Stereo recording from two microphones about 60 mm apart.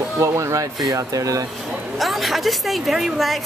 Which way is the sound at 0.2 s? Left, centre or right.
Right.